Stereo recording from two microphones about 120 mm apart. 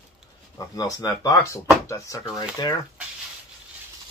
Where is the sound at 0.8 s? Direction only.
30° left (ahead or behind).